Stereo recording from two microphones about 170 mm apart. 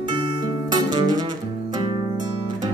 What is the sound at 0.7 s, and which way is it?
Music, 25° right (ahead or behind).